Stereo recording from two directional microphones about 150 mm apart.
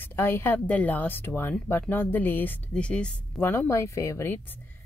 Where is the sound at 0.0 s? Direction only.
15° left (ahead or behind).